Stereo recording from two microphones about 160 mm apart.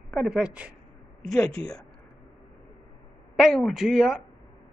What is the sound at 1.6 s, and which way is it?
Speech, 40° right (ahead or behind).